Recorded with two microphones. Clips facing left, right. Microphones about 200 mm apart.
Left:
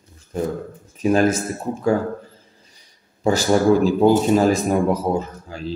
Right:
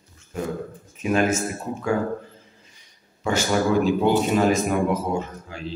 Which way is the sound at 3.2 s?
35° left (ahead or behind).